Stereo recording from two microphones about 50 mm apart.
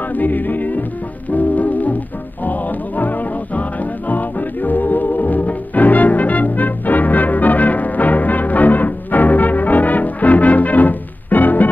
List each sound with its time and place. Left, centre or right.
0.1 s music: left